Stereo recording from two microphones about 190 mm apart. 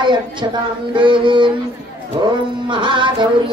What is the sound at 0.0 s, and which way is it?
Speech, 25° right (ahead or behind).